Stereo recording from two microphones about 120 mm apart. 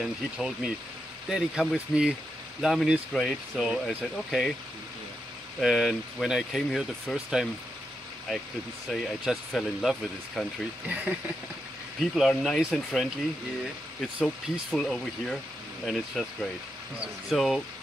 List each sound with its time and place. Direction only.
0.0 s speech: 5° right (ahead or behind)
5.6 s speech: centre (ahead or behind)
8.8 s speech: centre (ahead or behind)
12.0 s speech: centre (ahead or behind)
14.2 s speech: 5° left (ahead or behind)
17.3 s speech: centre (ahead or behind)